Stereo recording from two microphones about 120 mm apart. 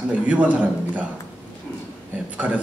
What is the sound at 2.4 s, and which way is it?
Speech, 15° right (ahead or behind).